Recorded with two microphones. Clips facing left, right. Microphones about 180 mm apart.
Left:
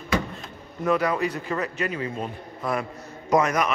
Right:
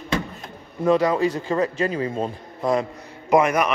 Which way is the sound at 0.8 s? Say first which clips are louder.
Right 5 dB; 30° right (ahead or behind).